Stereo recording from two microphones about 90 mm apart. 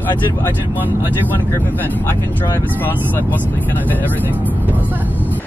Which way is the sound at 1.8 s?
20° left (ahead or behind).